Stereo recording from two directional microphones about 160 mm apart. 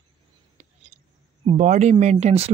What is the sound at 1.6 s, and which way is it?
Speech, 45° right (ahead or behind).